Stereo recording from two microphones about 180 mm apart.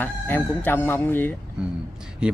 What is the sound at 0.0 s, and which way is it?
Chicken, 10° left (ahead or behind).